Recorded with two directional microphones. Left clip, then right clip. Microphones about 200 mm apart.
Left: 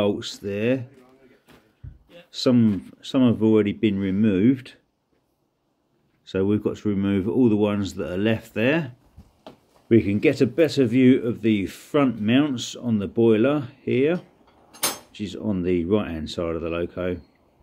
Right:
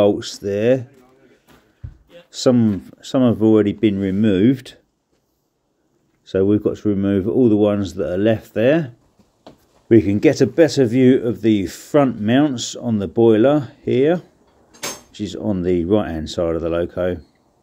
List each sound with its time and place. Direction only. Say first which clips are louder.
0.0 s speech: right 8 dB; 15° right (ahead or behind)
2.3 s speech: right 4 dB; 15° right (ahead or behind)
6.2 s speech: right 6 dB; 15° right (ahead or behind)
14.7 s a sound: left 1 dB; 50° left (ahead or behind)
15.1 s speech: right 5 dB; 20° right (ahead or behind)